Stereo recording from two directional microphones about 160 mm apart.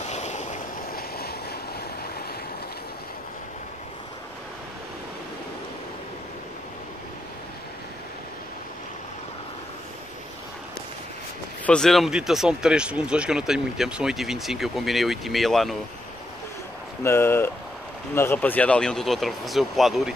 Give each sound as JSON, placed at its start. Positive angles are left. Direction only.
{"t": 0.0, "sound": "boat", "side_deg": 45}
{"t": 0.9, "sound": "waves", "side_deg": 75}
{"t": 11.6, "sound": "speech", "side_deg": 5}
{"t": 17.0, "sound": "speech", "side_deg": 15}